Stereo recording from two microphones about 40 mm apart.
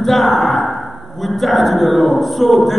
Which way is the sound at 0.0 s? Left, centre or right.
Centre.